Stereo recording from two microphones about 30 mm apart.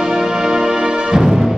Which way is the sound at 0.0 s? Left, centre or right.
Right.